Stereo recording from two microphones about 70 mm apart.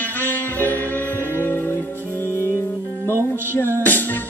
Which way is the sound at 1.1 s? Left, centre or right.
Right.